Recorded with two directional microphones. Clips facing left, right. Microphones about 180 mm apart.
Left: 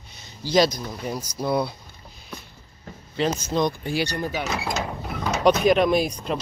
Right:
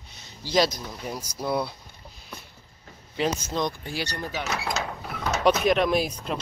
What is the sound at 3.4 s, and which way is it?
Speech, 5° left (ahead or behind).